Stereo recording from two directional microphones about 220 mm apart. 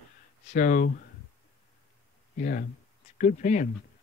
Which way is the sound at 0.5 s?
35° left (ahead or behind).